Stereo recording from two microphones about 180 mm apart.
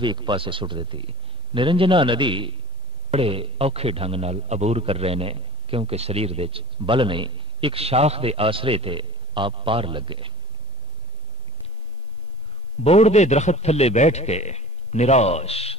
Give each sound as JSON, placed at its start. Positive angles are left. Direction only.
{"t": 0.0, "sound": "a man's voice", "side_deg": -25}
{"t": 12.8, "sound": "a man's voice", "side_deg": 35}